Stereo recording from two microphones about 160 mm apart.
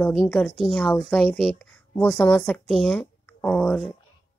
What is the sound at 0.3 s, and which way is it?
A woman's voice, 5° left (ahead or behind).